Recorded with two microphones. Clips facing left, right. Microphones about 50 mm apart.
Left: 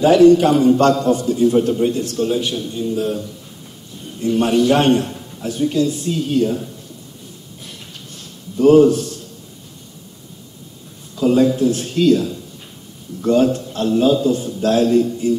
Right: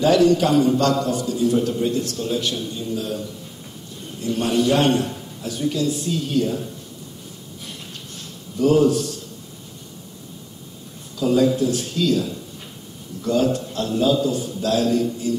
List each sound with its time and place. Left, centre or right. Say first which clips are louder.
0.0 s a man's voice: left 6 dB; left
2.2 s a man's voice: left 4 dB; left
3.0 s a man's voice: left 6 dB; left
8.5 s a man's voice: left 6 dB; left
11.1 s a man's voice: left 3 dB; left